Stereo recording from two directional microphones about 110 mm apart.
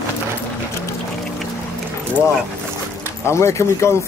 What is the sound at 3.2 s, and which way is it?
Speech, 25° left (ahead or behind).